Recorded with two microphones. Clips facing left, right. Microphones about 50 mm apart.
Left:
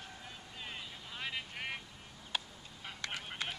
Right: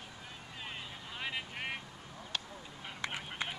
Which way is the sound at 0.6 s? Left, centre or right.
Centre.